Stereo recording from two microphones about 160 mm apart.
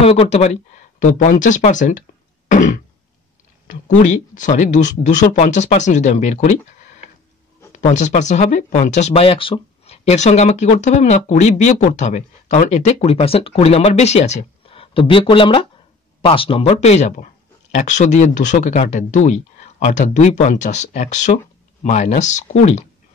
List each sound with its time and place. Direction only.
0.0 s speech: 40° left (ahead or behind)
7.7 s speech: 50° left (ahead or behind)